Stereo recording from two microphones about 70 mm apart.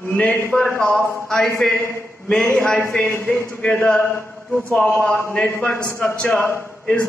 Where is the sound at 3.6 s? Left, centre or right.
Centre.